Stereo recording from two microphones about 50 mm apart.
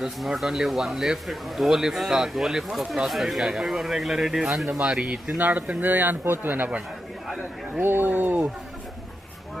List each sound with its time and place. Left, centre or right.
0.0 s a man's voice: centre
5.0 s speech: right
5.4 s speech: right
7.7 s speech: right
8.1 s a sound: right